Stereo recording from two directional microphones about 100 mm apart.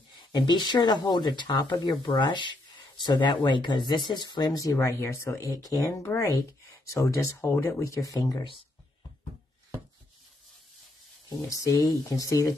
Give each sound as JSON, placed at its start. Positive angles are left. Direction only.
{"t": 0.1, "sound": "speech", "side_deg": 45}
{"t": 11.4, "sound": "speech", "side_deg": 35}